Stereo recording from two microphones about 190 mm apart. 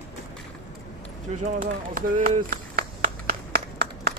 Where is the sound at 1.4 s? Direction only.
40° right (ahead or behind).